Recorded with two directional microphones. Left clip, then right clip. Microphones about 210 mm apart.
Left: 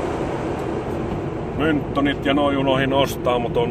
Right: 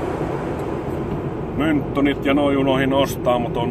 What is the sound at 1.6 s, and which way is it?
Speech, 20° right (ahead or behind).